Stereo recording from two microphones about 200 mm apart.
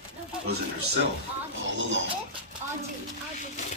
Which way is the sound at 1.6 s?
65° right (ahead or behind).